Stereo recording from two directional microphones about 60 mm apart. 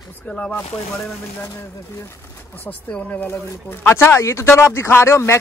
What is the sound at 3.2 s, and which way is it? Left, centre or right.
Speech, left.